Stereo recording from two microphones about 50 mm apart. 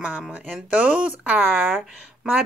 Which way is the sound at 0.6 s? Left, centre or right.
Right.